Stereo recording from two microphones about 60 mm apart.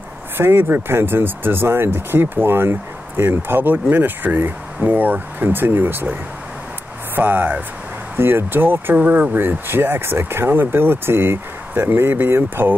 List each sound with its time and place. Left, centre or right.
0.4 s speech: right
7.2 s speech: right
8.9 s speech: right